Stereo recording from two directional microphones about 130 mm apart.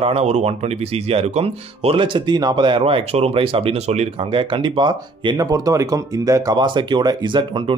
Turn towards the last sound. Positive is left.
turn(degrees=-40)  # may be behind; listen again after turning